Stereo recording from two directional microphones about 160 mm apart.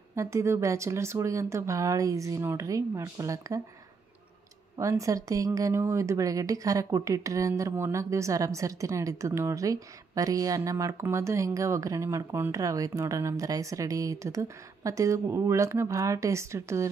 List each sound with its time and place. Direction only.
0.1 s speech: 20° right (ahead or behind)
4.7 s speech: 20° right (ahead or behind)